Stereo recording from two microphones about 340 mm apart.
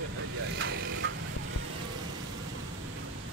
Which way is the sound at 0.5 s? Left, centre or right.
Right.